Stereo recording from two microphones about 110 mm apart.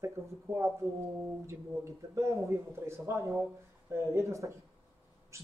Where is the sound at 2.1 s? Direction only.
25° right (ahead or behind).